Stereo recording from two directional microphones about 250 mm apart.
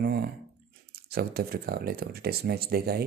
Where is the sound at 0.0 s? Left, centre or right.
Right.